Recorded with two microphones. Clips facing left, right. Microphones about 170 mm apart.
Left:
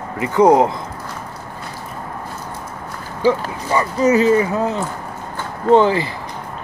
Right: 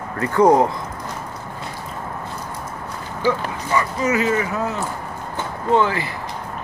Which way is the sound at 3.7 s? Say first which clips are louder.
Left 5 dB; 35° left (ahead or behind).